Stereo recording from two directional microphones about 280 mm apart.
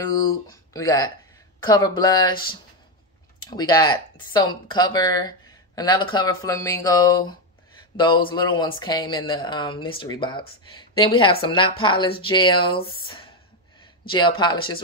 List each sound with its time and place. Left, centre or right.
0.0 s speech: centre
3.4 s speech: centre